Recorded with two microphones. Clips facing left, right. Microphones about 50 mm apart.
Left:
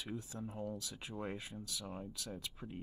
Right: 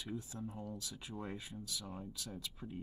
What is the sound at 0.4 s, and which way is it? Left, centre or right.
Speech, left.